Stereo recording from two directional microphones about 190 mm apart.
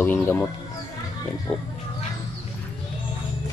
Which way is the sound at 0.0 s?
10° left (ahead or behind).